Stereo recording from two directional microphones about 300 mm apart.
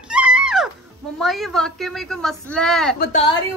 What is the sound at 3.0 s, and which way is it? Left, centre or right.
Speech, left.